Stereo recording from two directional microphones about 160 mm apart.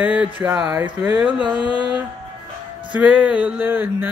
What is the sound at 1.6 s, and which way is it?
Music, 30° left (ahead or behind).